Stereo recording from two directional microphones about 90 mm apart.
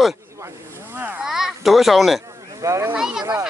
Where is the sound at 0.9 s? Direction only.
20° right (ahead or behind).